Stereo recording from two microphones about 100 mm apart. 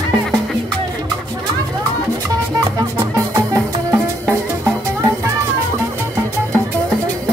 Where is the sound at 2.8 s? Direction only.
30° right (ahead or behind).